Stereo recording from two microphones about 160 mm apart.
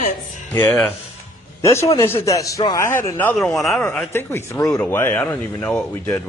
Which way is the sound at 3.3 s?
Centre (ahead or behind).